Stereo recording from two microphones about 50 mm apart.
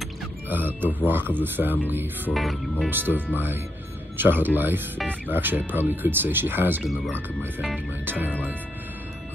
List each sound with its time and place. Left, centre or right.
0.5 s speech: right
2.3 s speech: centre
2.9 s speech: right
8.0 s speech: right